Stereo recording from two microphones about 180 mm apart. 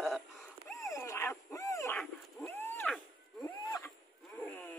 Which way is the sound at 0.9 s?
15° left (ahead or behind).